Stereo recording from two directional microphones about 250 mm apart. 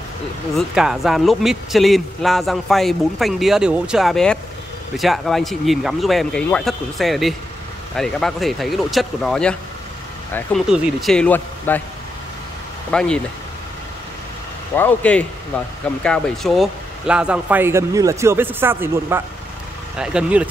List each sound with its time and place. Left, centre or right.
0.6 s speech: centre
12.9 s speech: centre
14.8 s speech: centre